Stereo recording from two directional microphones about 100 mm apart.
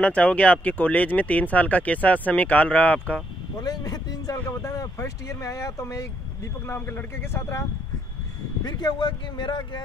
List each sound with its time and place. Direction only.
0.0 s speech: 15° left (ahead or behind)
3.6 s speech: 40° left (ahead or behind)
8.6 s speech: 45° left (ahead or behind)